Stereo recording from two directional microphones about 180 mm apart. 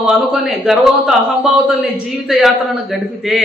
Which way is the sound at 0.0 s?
5° right (ahead or behind).